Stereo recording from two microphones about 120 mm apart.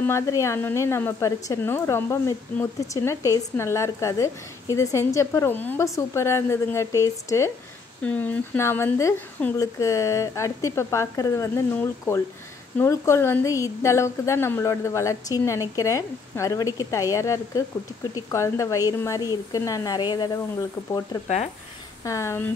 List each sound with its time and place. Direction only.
0.0 s a woman's voice: 25° left (ahead or behind)
8.0 s a woman's voice: 10° left (ahead or behind); by 20.2 s 35° left (ahead or behind)
22.0 s a woman's voice: 25° left (ahead or behind)